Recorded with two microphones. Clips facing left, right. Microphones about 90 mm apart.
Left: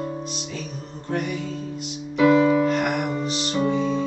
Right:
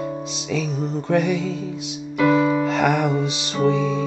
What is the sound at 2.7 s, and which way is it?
Music, 85° right.